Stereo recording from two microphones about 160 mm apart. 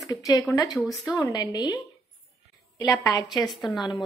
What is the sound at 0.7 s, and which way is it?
Speech, centre (ahead or behind).